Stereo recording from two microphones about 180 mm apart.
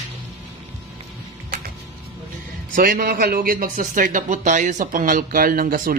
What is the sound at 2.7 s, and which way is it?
Speech, 55° right (ahead or behind).